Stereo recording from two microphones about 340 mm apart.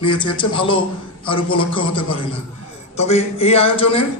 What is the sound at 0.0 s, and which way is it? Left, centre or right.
A man's voice, centre.